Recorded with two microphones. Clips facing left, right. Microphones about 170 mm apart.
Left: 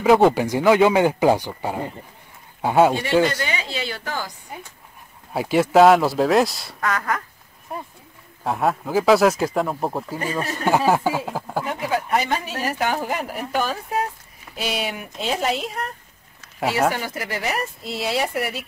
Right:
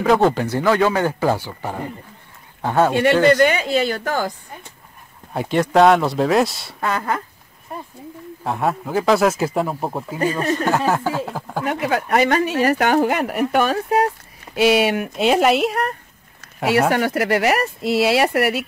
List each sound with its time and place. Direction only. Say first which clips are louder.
0.0 s speech: left 1 dB; 10° left (ahead or behind)
3.4 s a woman's voice: right 10 dB; 50° right (ahead or behind)
5.3 s speech: even; 5° left (ahead or behind)
6.8 s speech: right 2 dB; 30° right (ahead or behind)
7.7 s a sound: even; centre (ahead or behind)
8.5 s speech: even; centre (ahead or behind)
10.6 s speech: left 5 dB; 10° left (ahead or behind)
11.6 s speech: right 7 dB; 70° right (ahead or behind)